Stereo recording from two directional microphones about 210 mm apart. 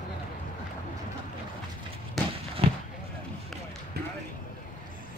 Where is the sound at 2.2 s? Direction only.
Centre (ahead or behind).